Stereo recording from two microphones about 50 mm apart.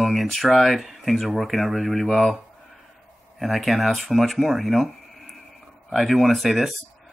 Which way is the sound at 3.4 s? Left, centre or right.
Centre.